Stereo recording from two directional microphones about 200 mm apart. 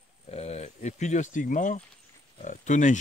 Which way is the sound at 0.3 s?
30° left (ahead or behind).